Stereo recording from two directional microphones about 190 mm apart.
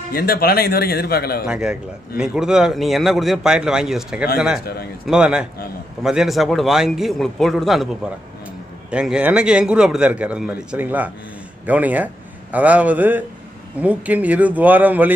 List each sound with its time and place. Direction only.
0.1 s a man's voice: 55° left (ahead or behind)
1.5 s a man's voice: 5° right (ahead or behind)
8.9 s a man's voice: 5° right (ahead or behind)